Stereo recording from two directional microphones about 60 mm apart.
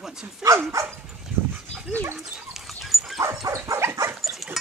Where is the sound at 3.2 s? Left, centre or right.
Right.